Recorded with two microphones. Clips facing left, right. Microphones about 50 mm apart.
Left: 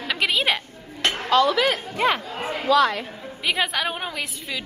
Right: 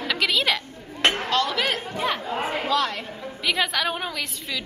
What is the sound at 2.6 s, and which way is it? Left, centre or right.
Speech, centre.